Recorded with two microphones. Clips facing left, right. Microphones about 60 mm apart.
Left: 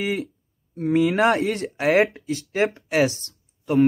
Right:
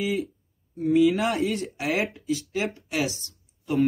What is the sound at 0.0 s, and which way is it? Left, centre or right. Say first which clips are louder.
Speech: left 1 dB; left.